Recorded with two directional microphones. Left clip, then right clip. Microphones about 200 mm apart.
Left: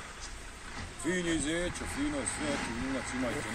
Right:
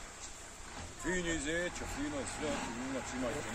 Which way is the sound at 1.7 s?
40° right (ahead or behind).